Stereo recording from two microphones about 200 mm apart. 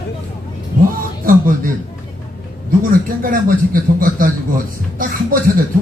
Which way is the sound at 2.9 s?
45° right (ahead or behind).